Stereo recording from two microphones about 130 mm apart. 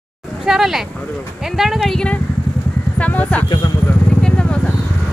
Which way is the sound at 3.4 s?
35° left (ahead or behind).